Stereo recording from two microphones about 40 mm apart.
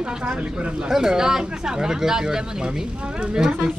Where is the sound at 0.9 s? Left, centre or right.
Centre.